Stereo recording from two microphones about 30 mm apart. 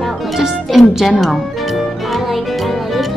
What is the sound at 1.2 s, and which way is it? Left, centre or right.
Music, centre.